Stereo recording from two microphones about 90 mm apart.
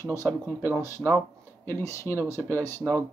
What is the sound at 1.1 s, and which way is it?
Speech, 25° left (ahead or behind).